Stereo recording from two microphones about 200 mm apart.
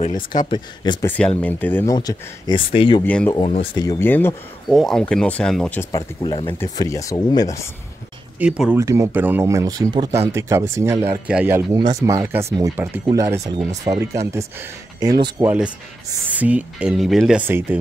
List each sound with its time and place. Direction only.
0.1 s speech: 20° left (ahead or behind)
1.0 s speech: 5° left (ahead or behind)
2.0 s speech: 20° left (ahead or behind)
3.0 s speech: 10° left (ahead or behind)
3.3 s speech: 25° left (ahead or behind)
3.8 s speech: 15° left (ahead or behind)
8.4 s speech: 5° right (ahead or behind)
15.4 s speech: 5° right (ahead or behind)